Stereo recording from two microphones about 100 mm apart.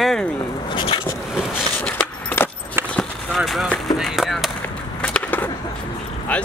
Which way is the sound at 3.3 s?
Centre (ahead or behind).